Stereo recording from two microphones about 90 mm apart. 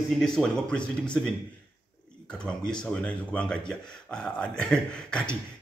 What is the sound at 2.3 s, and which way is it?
Speech, 10° left (ahead or behind).